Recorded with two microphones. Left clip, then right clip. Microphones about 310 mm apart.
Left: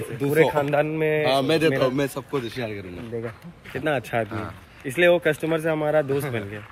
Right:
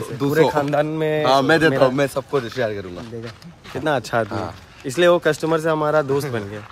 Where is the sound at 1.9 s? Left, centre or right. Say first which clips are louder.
Right 5 dB; right.